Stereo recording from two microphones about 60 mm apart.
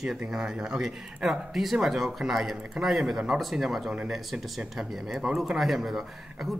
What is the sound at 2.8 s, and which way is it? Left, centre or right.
Speech, centre.